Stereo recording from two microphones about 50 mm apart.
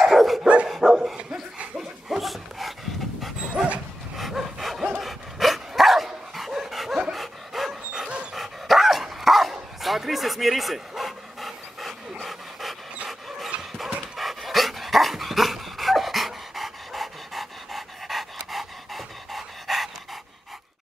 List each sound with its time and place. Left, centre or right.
0.1 s dog: centre
0.9 s dog: centre
1.8 s dog: centre
3.5 s dog: right
4.2 s dog: centre
14.1 s dog: centre